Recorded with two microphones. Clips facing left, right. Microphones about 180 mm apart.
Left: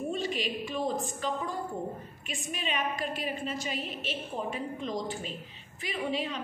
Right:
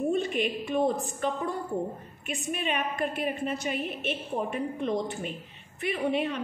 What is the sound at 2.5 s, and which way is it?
A woman's voice, 55° right (ahead or behind).